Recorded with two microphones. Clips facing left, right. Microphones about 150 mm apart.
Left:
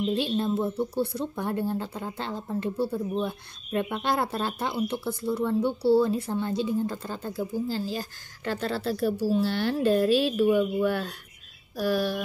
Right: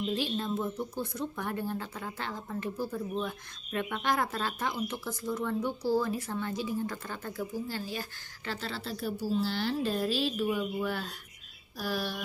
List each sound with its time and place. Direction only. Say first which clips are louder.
0.1 s speech: left 6 dB; 30° left (ahead or behind)
8.5 s speech: left 8 dB; 50° left (ahead or behind)